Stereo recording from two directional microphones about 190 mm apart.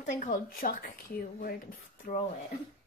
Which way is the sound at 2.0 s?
45° left (ahead or behind).